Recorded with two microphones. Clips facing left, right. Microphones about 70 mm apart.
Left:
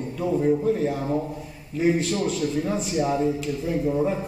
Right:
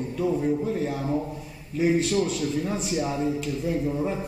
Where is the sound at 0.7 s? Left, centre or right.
Centre.